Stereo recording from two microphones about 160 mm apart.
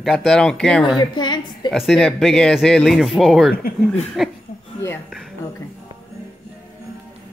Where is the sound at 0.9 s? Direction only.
25° left (ahead or behind).